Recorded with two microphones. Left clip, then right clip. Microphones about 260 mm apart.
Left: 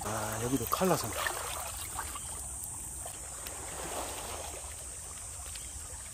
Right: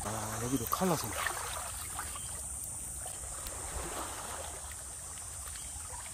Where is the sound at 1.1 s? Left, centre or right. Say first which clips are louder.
Left 1 dB; left.